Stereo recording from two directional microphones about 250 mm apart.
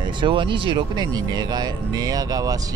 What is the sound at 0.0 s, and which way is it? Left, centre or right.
Speech, centre.